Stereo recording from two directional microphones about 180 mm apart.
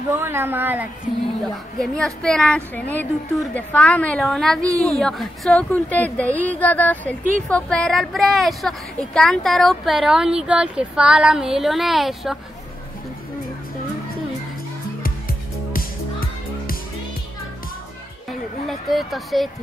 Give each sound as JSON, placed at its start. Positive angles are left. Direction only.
{"t": 0.1, "sound": "speech", "side_deg": -15}
{"t": 1.5, "sound": "a woman's voice", "side_deg": 0}
{"t": 15.0, "sound": "music", "side_deg": 55}
{"t": 18.7, "sound": "speech", "side_deg": 0}